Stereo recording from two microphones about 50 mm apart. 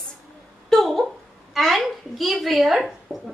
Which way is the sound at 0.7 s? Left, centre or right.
Centre.